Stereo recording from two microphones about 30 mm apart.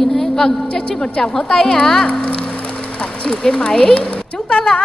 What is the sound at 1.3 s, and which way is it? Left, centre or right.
Speech, left.